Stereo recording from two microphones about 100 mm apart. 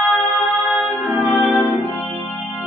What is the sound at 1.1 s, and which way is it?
Music, centre (ahead or behind).